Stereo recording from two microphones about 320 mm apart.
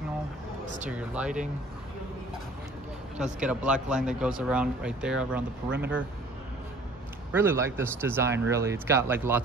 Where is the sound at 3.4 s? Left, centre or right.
Centre.